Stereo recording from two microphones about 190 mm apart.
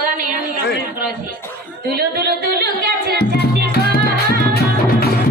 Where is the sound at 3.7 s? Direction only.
55° left (ahead or behind).